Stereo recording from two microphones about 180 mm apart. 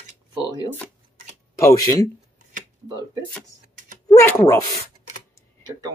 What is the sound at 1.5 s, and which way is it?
Speech, 20° left (ahead or behind).